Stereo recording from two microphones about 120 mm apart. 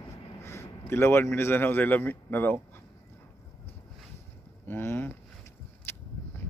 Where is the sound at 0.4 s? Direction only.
20° left (ahead or behind).